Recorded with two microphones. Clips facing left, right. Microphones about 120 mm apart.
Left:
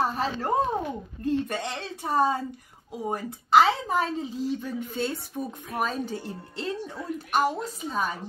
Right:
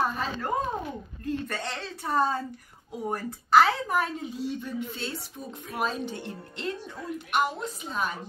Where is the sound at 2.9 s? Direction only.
20° left (ahead or behind); by 5.6 s 55° left (ahead or behind).